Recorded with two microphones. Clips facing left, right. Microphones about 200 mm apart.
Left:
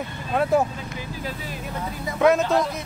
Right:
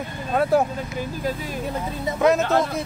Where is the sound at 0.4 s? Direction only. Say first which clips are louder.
Right 1 dB; centre (ahead or behind).